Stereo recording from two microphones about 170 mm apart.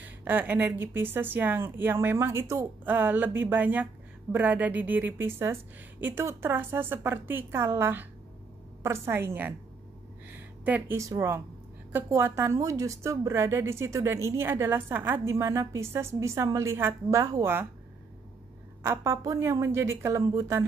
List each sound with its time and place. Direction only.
0.0 s a woman's voice: 10° right (ahead or behind)
10.6 s a woman's voice: 10° right (ahead or behind)
18.8 s a woman's voice: 15° right (ahead or behind)